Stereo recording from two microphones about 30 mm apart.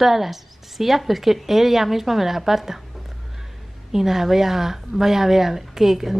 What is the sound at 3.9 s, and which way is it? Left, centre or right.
A woman's voice, centre.